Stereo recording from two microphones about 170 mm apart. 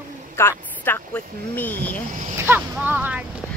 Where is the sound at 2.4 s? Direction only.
10° right (ahead or behind).